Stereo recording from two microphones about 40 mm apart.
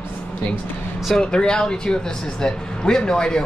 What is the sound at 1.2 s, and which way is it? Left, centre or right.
Speech, left.